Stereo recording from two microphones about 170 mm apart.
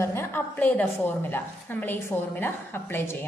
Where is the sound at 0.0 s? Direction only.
15° left (ahead or behind).